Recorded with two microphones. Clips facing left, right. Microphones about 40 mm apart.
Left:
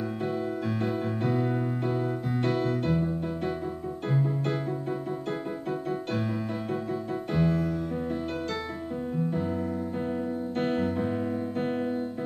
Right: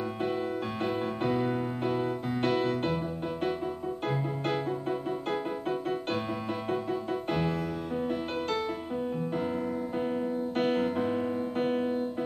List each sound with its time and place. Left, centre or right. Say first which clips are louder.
0.2 s music: even; right
5.7 s music: left 1 dB; right
9.9 s keyboard: right 2 dB; right
10.5 s music: even; right
11.1 s music: even; centre
11.5 s music: right 3 dB; right